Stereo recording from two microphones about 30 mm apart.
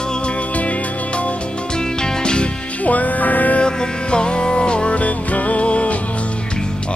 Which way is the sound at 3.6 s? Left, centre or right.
Left.